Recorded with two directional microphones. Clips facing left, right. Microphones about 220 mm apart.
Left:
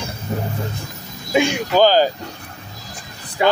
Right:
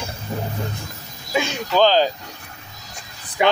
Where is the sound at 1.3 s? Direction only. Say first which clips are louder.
Left 5 dB; 15° left (ahead or behind).